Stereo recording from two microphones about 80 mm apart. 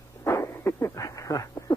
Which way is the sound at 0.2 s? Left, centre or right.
Left.